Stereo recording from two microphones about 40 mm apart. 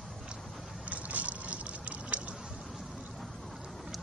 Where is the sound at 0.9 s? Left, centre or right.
Right.